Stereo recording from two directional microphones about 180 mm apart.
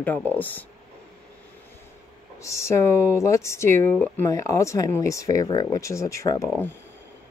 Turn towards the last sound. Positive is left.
turn(degrees=15)  # may be behind; listen again after turning